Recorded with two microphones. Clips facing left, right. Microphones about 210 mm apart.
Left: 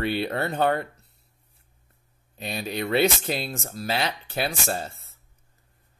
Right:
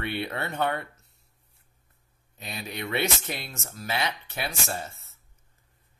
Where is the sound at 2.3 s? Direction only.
30° left (ahead or behind).